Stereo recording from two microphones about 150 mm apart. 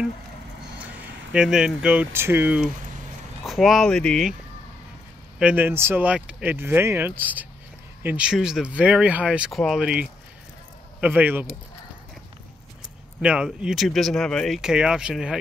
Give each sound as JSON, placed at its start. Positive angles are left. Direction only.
{"t": 1.3, "sound": "speech", "side_deg": -5}
{"t": 3.4, "sound": "speech", "side_deg": 0}
{"t": 5.4, "sound": "speech", "side_deg": -10}
{"t": 13.2, "sound": "speech", "side_deg": -5}